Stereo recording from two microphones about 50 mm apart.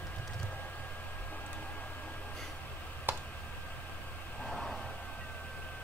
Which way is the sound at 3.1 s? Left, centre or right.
Right.